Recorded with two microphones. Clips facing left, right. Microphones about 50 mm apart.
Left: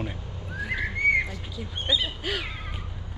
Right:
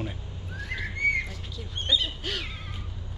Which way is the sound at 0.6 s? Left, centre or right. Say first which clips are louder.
Left 3 dB; centre.